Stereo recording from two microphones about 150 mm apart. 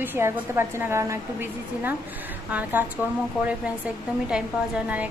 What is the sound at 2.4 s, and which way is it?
Speech, 10° right (ahead or behind).